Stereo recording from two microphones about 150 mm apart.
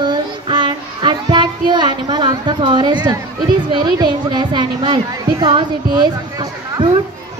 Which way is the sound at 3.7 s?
30° right (ahead or behind).